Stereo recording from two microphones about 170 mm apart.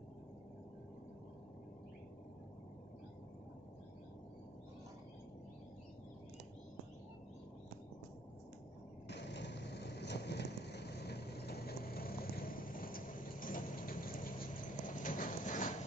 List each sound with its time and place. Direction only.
9.1 s vehicle: 90° left; by 15.7 s 50° left (ahead or behind)